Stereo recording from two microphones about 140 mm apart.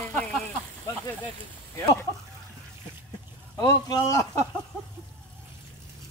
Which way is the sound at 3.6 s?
25° left (ahead or behind).